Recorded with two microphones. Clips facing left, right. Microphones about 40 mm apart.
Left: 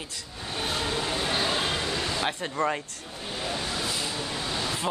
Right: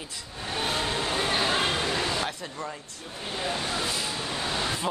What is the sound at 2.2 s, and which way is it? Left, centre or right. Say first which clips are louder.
Speech: left 5 dB; left.